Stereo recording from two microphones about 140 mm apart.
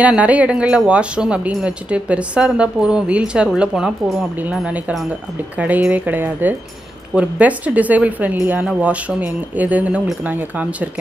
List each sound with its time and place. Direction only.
0.0 s speech: 10° right (ahead or behind)